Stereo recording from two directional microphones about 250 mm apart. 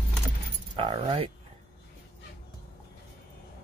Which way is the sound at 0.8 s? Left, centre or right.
Right.